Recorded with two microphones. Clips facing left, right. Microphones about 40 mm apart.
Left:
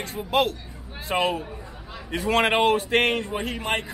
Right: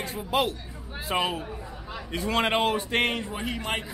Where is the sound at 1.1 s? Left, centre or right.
Left.